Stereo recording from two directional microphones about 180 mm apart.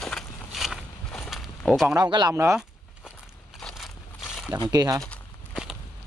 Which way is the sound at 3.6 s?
Centre (ahead or behind).